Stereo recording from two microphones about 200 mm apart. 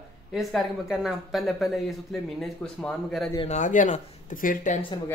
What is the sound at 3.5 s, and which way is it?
Speech, 40° left (ahead or behind).